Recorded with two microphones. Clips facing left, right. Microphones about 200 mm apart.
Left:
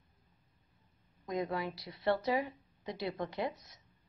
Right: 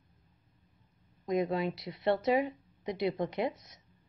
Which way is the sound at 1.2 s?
20° right (ahead or behind).